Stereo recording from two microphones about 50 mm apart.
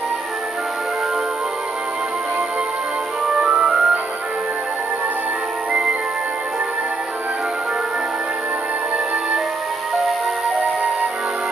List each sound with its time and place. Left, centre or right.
3.3 s music: right
5.7 s music: right